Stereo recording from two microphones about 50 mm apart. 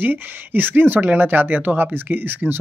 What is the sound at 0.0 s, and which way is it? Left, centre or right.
Speech, right.